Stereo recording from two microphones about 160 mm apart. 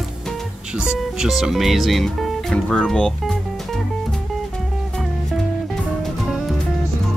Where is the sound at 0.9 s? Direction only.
5° right (ahead or behind).